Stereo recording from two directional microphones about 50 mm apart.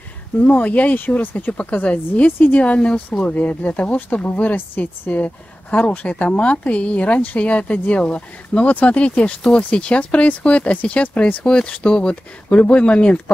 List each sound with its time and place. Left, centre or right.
0.4 s speech: left
2.6 s speech: left
4.6 s a woman's voice: left
5.1 s speech: left